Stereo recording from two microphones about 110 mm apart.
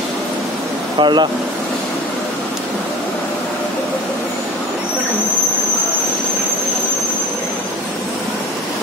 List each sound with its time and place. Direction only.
0.9 s speech: 45° right (ahead or behind)